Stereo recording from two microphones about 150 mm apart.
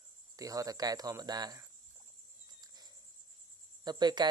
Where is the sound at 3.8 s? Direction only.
30° right (ahead or behind).